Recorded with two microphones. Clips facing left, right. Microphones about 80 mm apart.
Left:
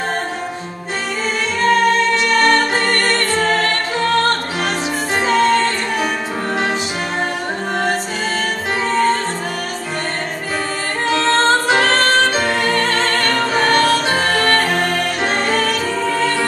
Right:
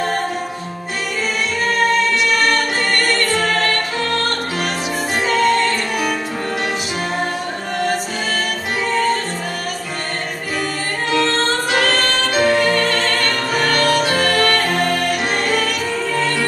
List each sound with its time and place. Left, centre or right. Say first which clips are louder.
2.3 s music: left 3 dB; left
5.2 s music: left 2 dB; left
11.1 s music: left 4 dB; left